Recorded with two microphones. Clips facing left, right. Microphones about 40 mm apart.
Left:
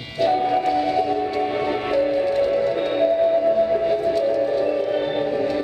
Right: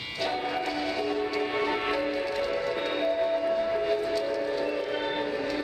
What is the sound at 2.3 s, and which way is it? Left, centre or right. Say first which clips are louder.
Music: left 9 dB; centre.